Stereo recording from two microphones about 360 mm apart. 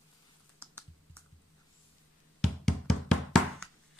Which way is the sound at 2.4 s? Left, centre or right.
Centre.